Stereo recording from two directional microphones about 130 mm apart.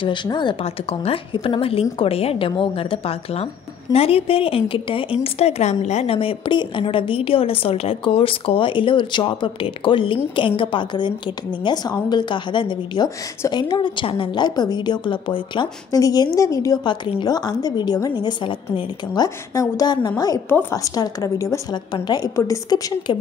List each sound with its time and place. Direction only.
0.0 s a woman's voice: 35° left (ahead or behind)
19.2 s a woman's voice: 25° left (ahead or behind)